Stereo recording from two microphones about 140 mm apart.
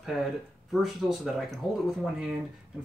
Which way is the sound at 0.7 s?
Centre (ahead or behind).